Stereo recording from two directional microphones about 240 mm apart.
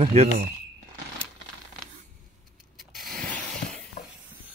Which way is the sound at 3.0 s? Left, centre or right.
Centre.